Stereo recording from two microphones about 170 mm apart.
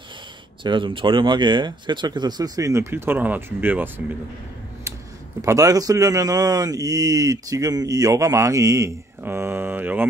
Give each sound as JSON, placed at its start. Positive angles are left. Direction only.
{"t": 0.7, "sound": "speech", "side_deg": -30}
{"t": 5.4, "sound": "speech", "side_deg": -20}